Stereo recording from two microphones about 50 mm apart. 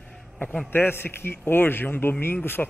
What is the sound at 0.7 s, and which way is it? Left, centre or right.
A man's voice, left.